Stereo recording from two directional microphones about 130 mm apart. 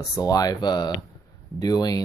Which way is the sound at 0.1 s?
30° left (ahead or behind).